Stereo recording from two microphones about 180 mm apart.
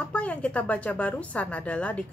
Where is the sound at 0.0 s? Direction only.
5° left (ahead or behind).